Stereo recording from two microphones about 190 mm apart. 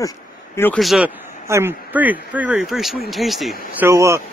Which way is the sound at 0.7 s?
Centre (ahead or behind).